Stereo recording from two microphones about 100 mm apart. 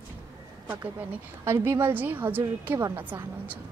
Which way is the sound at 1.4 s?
25° right (ahead or behind).